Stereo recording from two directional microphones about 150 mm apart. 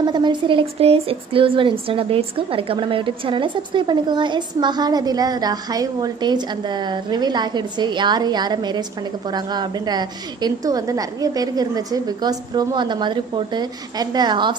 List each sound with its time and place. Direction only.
0.0 s speech: 30° right (ahead or behind)